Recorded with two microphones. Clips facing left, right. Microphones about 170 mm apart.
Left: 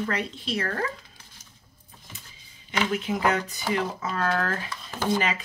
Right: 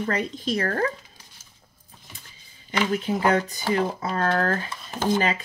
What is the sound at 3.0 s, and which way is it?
Speech, 35° right (ahead or behind).